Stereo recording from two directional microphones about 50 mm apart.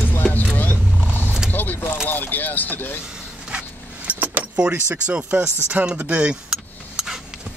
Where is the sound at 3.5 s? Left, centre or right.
Right.